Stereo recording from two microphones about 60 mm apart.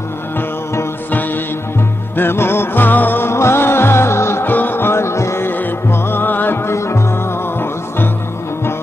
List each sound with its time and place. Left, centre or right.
2.1 s music: left
5.5 s music: left